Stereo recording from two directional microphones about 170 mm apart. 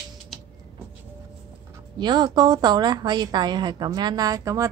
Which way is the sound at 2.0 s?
25° right (ahead or behind).